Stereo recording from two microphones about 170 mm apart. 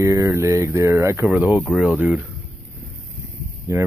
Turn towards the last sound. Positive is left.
turn(degrees=-15)  # may be behind; listen again after turning